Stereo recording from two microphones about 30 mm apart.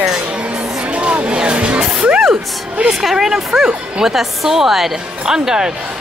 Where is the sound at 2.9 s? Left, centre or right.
Centre.